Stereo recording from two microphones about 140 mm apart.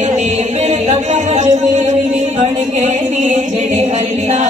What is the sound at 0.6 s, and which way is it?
Music, 50° right (ahead or behind).